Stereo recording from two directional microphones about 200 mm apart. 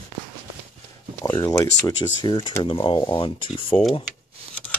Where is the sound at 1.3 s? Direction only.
20° left (ahead or behind).